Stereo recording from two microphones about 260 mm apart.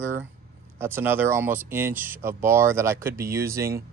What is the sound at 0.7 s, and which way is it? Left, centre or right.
Speech, centre.